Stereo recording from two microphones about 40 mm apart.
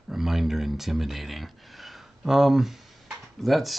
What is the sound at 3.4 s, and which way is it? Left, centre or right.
Speech, centre.